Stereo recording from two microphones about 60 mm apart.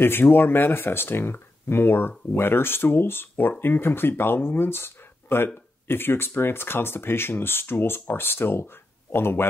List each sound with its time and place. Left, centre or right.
0.0 s speech: left